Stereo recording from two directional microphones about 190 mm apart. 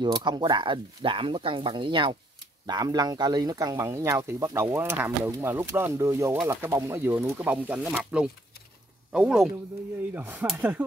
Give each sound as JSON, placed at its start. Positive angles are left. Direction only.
{"t": 0.0, "sound": "speech", "side_deg": -25}